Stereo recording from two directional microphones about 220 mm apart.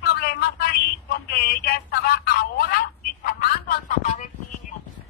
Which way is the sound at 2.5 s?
40° left (ahead or behind).